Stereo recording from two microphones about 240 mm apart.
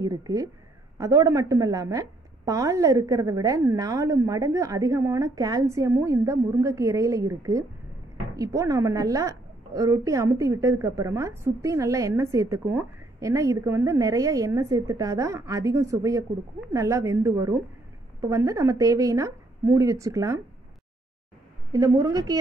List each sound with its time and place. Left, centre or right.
0.0 s a woman's voice: centre
21.7 s a woman's voice: centre